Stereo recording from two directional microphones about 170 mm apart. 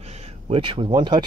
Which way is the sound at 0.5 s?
30° right (ahead or behind).